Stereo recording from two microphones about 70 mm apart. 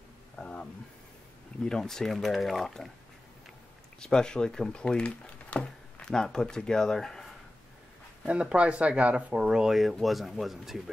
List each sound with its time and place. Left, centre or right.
0.4 s a sound: centre
1.6 s speech: centre
4.0 s speech: centre
8.3 s speech: centre